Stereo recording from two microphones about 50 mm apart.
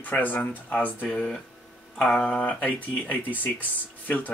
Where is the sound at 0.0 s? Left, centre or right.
Left.